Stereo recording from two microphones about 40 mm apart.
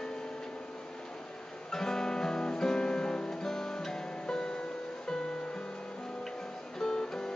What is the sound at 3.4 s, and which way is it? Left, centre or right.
Guitar, centre.